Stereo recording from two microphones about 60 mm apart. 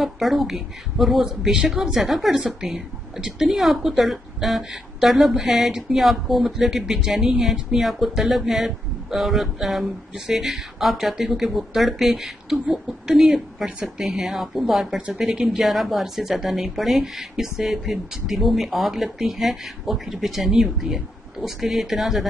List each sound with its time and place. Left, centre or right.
0.0 s a woman's voice: centre
15.0 s a woman's voice: centre
15.2 s speech: centre